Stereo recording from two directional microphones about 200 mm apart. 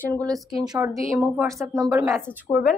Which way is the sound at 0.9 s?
Centre (ahead or behind).